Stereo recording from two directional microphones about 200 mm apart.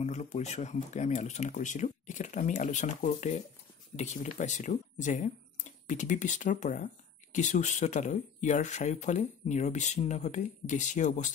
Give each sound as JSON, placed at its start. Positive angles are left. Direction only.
{"t": 0.0, "sound": "speech", "side_deg": 35}